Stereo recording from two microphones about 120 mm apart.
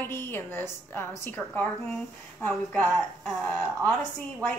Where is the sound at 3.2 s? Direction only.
Centre (ahead or behind).